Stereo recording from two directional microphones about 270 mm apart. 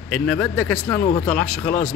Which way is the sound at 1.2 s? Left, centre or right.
Centre.